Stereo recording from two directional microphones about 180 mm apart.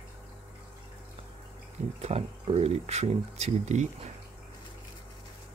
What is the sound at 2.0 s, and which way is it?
Speech, 35° right (ahead or behind).